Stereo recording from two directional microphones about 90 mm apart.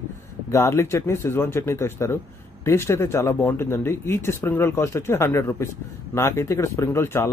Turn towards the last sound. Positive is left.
turn(degrees=35)  # may be behind; listen again after turning